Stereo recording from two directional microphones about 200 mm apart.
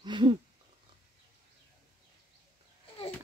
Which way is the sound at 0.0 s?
25° right (ahead or behind).